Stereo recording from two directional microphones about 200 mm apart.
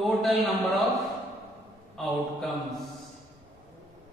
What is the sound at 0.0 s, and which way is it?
A man's voice, centre (ahead or behind).